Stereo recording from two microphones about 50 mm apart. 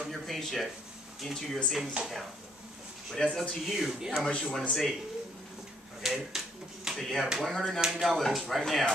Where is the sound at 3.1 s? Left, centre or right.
Centre.